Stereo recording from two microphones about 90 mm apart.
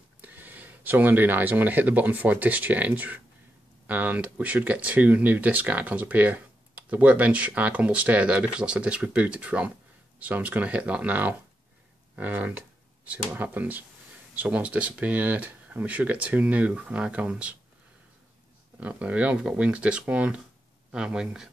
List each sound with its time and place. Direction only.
0.2 s speech: 20° right (ahead or behind)
12.2 s a sound: 15° right (ahead or behind)
13.3 s speech: 20° right (ahead or behind)
18.8 s speech: 15° right (ahead or behind)